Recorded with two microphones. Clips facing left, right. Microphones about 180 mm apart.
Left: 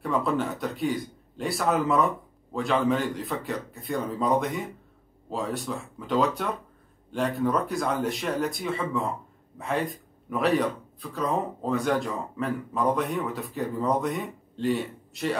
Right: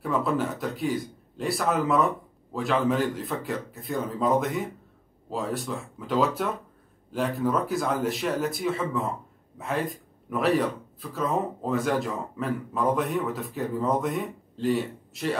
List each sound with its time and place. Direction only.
0.0 s speech: centre (ahead or behind)